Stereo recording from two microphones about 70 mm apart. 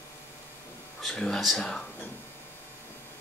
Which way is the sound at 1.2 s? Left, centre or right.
Centre.